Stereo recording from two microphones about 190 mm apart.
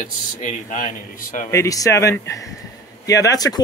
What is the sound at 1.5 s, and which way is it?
Speech, 15° left (ahead or behind).